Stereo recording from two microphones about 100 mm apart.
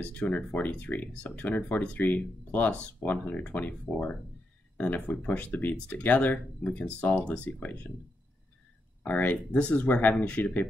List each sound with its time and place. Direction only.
0.0 s speech: 15° left (ahead or behind)
9.0 s speech: 15° left (ahead or behind)